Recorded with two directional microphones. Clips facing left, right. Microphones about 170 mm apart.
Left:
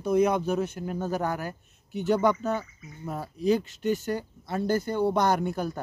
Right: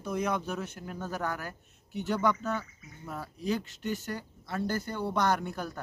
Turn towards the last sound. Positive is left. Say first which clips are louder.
# left 4 dB
turn(degrees=20)  # may be behind; listen again after turning